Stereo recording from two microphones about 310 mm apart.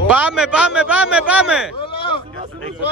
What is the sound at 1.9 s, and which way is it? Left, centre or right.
Speech, centre.